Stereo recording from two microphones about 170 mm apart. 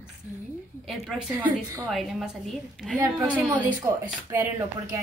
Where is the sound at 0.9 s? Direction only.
Centre (ahead or behind).